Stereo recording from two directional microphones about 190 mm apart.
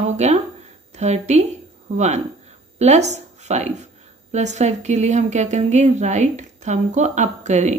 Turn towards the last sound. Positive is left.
turn(degrees=-40)  # may be behind; listen again after turning